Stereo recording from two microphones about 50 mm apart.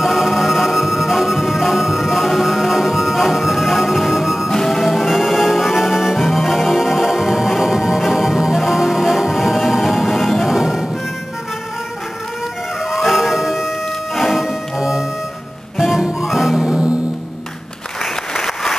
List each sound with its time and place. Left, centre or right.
0.0 s music: centre
4.5 s music: centre
4.9 s music: centre
12.9 s music: centre
16.6 s music: centre
18.3 s applause: centre